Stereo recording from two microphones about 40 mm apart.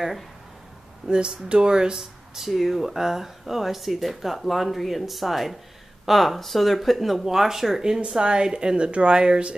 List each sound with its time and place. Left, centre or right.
1.0 s speech: centre
7.8 s a woman's voice: centre